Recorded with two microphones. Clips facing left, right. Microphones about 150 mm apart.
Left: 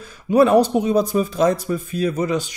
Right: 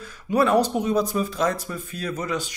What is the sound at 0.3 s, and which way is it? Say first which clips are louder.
Speech: left 6 dB; 20° left (ahead or behind).